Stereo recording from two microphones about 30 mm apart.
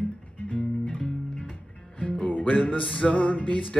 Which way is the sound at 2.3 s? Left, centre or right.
Left.